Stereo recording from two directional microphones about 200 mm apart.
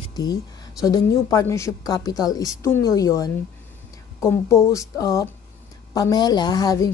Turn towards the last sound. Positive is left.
turn(degrees=20)  # may be behind; listen again after turning